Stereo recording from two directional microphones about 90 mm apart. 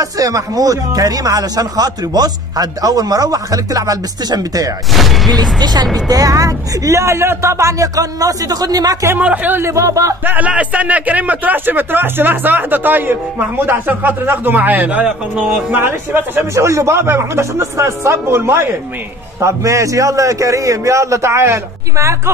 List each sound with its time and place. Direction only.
0.0 s speech: 40° right (ahead or behind)
4.9 s speech: centre (ahead or behind)
5.3 s a man's voice: 50° right (ahead or behind)
9.2 s a man's voice: 15° right (ahead or behind); by 10.1 s 40° right (ahead or behind)
10.2 s a man's voice: 15° right (ahead or behind)
15.0 s speech: 5° right (ahead or behind)
15.7 s a man's voice: 20° right (ahead or behind)